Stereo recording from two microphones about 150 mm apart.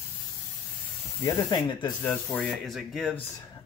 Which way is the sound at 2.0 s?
5° left (ahead or behind).